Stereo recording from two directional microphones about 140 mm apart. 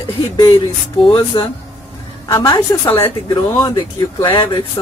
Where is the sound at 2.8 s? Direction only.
15° left (ahead or behind).